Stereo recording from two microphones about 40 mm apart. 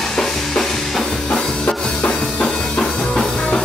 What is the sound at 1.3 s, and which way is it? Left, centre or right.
Music, left.